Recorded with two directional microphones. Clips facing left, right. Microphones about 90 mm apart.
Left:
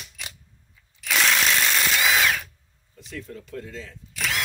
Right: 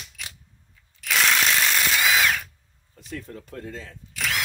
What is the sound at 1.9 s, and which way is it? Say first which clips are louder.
Drill: even; centre (ahead or behind).